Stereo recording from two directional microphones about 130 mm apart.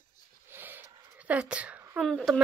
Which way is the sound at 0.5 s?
15° right (ahead or behind).